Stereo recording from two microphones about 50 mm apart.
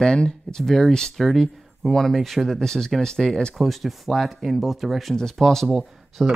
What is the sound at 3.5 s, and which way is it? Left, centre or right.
Speech, centre.